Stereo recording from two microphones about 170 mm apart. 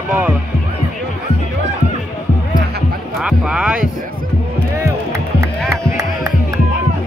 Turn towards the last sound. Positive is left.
turn(degrees=-15)  # may be behind; listen again after turning